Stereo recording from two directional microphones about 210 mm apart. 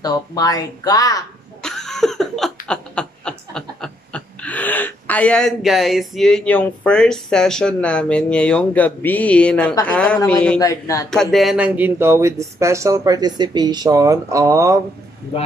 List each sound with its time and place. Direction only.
0.0 s speech: 20° left (ahead or behind)
1.6 s a sound: centre (ahead or behind)
9.8 s speech: 5° left (ahead or behind)
10.6 s speech: 15° left (ahead or behind)
11.1 s speech: centre (ahead or behind); by 14.8 s 15° right (ahead or behind)
15.3 s speech: 25° left (ahead or behind)